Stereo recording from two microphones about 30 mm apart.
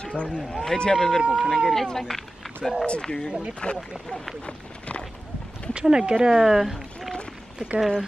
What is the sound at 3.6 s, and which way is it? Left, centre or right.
Speech, left.